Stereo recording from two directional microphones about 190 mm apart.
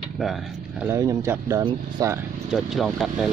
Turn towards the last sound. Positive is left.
turn(degrees=0)  # may be behind; listen again after turning